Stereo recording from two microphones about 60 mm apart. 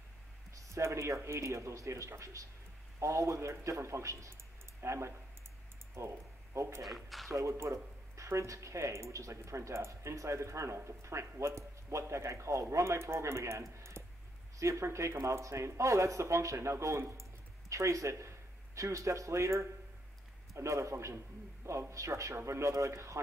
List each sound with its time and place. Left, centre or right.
0.5 s speech: right
6.8 s speech: centre
7.3 s speech: right
13.7 s typing: right
14.6 s speech: right